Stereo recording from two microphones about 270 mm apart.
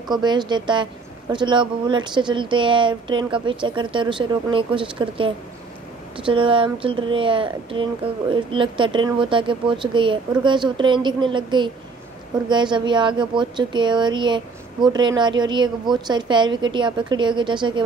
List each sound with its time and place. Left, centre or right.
0.1 s speech: centre